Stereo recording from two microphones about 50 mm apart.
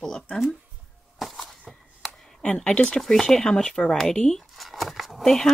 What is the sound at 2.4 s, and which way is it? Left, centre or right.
Speech, left.